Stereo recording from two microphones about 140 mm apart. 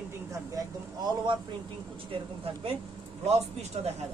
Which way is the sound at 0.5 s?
30° right (ahead or behind).